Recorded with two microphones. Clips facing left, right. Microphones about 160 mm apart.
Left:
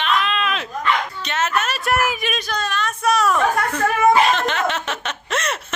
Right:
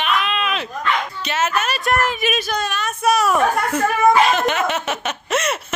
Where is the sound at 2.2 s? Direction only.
10° right (ahead or behind).